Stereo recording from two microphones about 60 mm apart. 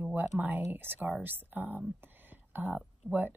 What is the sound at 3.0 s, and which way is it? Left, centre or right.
Speech, left.